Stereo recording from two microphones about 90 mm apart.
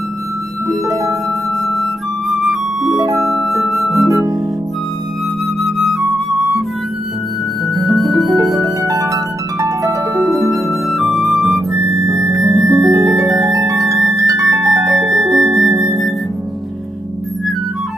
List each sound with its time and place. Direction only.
0.7 s music: 35° right (ahead or behind)
1.7 s music: centre (ahead or behind)
4.1 s music: 40° right (ahead or behind)
5.6 s music: centre (ahead or behind)
7.6 s music: centre (ahead or behind)
8.3 s music: 40° right (ahead or behind)
8.8 s harp: 40° right (ahead or behind)
10.3 s music: centre (ahead or behind)
12.4 s music: 35° right (ahead or behind)
15.8 s music: centre (ahead or behind)